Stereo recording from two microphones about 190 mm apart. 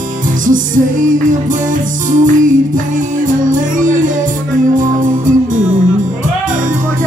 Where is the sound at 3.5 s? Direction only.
45° right (ahead or behind).